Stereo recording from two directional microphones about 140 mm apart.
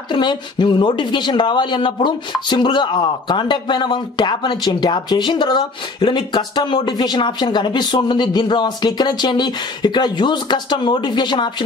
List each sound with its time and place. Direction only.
0.1 s speech: 35° left (ahead or behind)